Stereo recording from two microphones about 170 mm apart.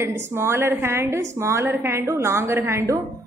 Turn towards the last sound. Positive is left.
turn(degrees=-15)  # may be behind; listen again after turning